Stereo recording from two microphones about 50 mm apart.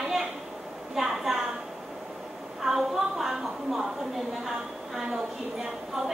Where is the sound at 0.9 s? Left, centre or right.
Centre.